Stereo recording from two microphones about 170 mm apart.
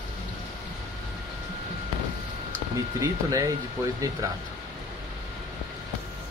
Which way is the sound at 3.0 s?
20° right (ahead or behind).